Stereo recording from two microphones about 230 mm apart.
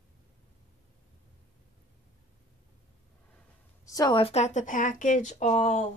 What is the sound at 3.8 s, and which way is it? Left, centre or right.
Speech, centre.